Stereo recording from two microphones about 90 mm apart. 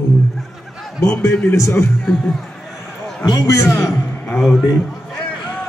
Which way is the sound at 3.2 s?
35° left (ahead or behind).